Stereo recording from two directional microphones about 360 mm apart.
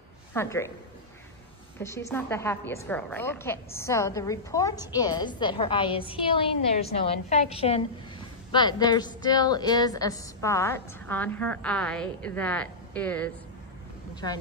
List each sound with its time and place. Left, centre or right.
0.3 s a woman's voice: centre
1.8 s a woman's voice: centre